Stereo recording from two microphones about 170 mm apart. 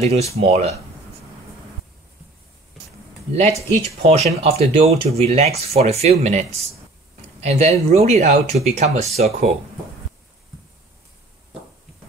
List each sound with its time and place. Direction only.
0.0 s speech: 40° right (ahead or behind)
3.3 s speech: 40° right (ahead or behind)